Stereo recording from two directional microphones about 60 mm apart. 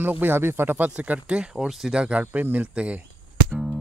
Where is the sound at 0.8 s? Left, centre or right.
Right.